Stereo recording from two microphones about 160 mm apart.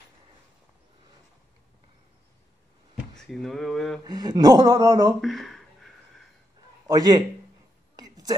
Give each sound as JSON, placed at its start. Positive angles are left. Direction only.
{"t": 3.2, "sound": "speech", "side_deg": 0}
{"t": 4.0, "sound": "speech", "side_deg": -25}
{"t": 5.2, "sound": "speech", "side_deg": 0}
{"t": 6.9, "sound": "speech", "side_deg": -25}
{"t": 7.9, "sound": "a sound", "side_deg": -25}